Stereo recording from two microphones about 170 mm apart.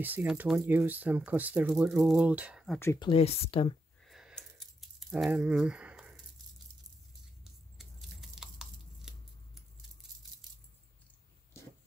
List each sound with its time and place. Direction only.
0.0 s speech: 10° right (ahead or behind)
3.0 s speech: 35° left (ahead or behind)
4.0 s rattle: centre (ahead or behind)
7.7 s chewing: centre (ahead or behind)